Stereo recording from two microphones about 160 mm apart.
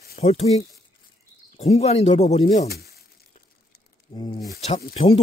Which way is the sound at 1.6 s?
40° left (ahead or behind).